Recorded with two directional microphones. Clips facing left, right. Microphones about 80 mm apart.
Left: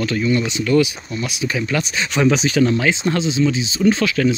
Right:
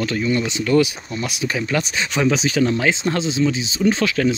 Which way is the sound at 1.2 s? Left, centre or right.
Right.